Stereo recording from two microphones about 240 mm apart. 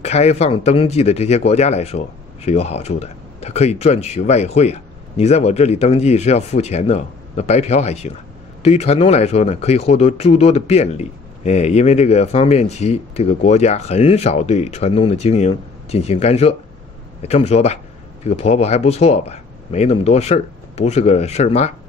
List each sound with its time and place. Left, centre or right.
0.0 s speech: left